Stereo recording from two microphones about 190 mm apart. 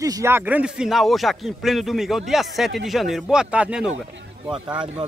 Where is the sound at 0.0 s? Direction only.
15° right (ahead or behind).